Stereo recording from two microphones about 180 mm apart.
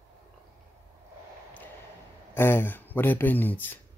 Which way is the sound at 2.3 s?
10° left (ahead or behind).